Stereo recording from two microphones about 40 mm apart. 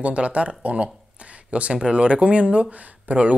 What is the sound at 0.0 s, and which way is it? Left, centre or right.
Speech, right.